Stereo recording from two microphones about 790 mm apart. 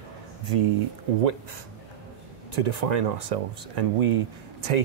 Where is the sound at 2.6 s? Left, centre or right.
Right.